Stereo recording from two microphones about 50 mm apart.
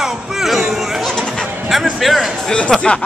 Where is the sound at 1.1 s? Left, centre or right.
Centre.